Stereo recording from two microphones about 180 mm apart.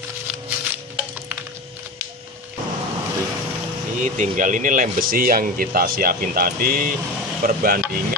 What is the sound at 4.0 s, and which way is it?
Speech, 45° right (ahead or behind).